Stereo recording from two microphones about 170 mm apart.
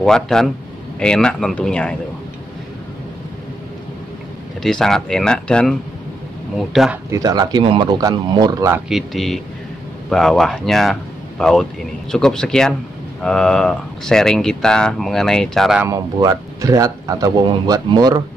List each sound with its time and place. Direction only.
0.0 s speech: 5° left (ahead or behind)
4.6 s speech: 5° left (ahead or behind)
7.1 s speech: 20° right (ahead or behind)
8.8 s speech: centre (ahead or behind)
15.8 s speech: 20° right (ahead or behind)